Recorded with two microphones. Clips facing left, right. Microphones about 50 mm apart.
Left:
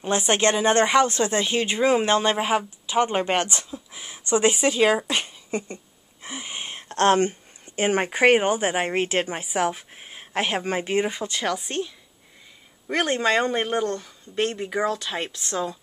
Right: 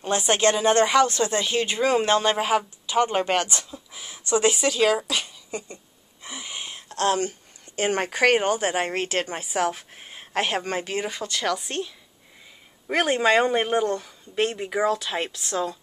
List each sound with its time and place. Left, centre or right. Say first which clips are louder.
0.1 s speech: even; left
3.7 s a sound: left 2 dB; centre
4.2 s speech: left 1 dB; left
6.2 s a sound: left 2 dB; left
7.6 s speech: left 2 dB; left; by 10.6 s centre
10.6 s speech: left 4 dB; centre
11.1 s speech: even; centre